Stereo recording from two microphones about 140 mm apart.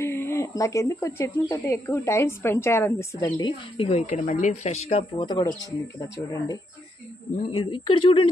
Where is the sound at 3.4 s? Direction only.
45° left (ahead or behind); by 6.5 s 25° left (ahead or behind).